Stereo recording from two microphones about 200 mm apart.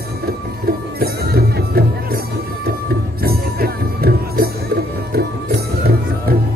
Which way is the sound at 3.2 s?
50° right (ahead or behind).